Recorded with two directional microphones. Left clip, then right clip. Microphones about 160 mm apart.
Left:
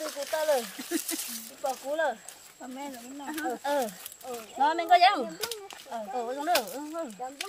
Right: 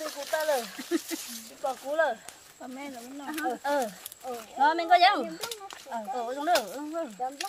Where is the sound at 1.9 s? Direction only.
10° right (ahead or behind).